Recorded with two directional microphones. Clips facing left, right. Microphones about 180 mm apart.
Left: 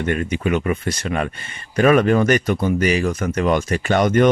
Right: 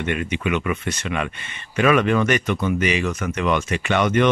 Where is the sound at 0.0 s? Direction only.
40° left (ahead or behind).